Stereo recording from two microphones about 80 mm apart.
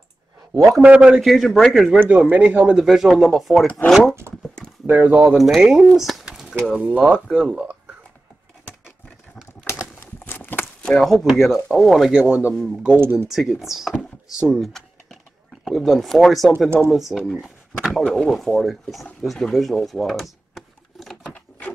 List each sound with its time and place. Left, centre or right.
0.8 s speech: centre
1.2 s speech: centre
2.0 s speech: centre
4.8 s speech: right
5.4 s speech: centre
5.9 s a sound: centre
7.0 s speech: centre
9.7 s a sound: left
10.8 s speech: centre
12.1 s speech: centre
12.9 s speech: right
13.3 s speech: centre
19.2 s a sound: centre
21.3 s sewing machine: left